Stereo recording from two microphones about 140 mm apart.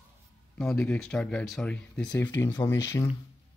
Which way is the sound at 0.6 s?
10° left (ahead or behind).